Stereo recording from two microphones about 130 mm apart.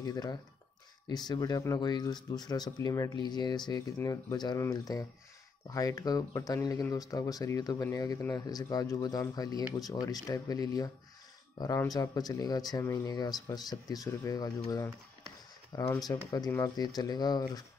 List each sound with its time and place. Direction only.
0.0 s speech: 30° left (ahead or behind)
11.9 s speech: 30° left (ahead or behind)
16.0 s speech: 30° left (ahead or behind)